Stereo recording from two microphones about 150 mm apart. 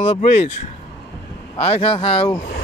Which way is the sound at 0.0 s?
50° left (ahead or behind).